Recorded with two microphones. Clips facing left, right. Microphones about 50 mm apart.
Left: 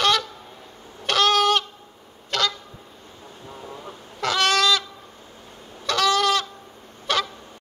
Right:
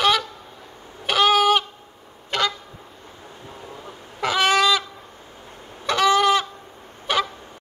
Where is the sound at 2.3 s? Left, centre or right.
Centre.